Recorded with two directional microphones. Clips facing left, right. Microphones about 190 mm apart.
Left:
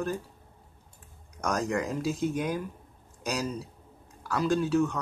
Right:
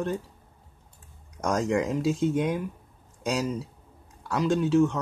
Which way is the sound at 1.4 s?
25° right (ahead or behind).